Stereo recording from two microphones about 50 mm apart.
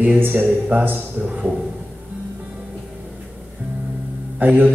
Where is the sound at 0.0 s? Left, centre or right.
Right.